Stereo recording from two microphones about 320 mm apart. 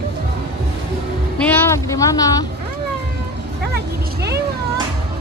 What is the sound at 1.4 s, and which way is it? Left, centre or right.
Music, centre.